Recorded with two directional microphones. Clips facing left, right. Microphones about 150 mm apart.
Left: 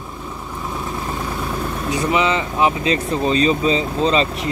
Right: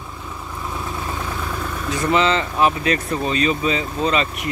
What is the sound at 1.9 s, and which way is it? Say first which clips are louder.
Speech: right 1 dB; 15° left (ahead or behind).